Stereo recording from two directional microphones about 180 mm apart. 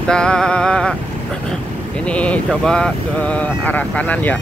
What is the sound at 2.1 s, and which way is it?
Speech, 5° left (ahead or behind).